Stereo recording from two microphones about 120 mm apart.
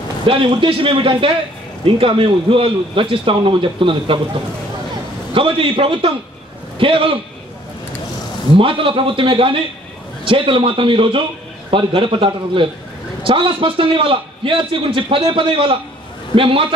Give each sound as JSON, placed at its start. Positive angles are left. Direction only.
{"t": 0.3, "sound": "a man's voice", "side_deg": -45}
{"t": 5.3, "sound": "a man's voice", "side_deg": -45}
{"t": 8.5, "sound": "a man's voice", "side_deg": -45}